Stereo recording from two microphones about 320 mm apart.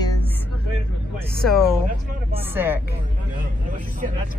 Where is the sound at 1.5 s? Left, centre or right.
Centre.